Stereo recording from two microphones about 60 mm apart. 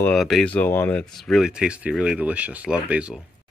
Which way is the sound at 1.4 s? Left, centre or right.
Centre.